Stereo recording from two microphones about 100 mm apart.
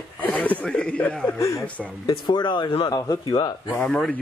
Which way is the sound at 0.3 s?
15° left (ahead or behind).